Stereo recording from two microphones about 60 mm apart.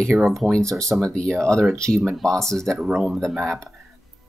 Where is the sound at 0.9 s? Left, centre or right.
Centre.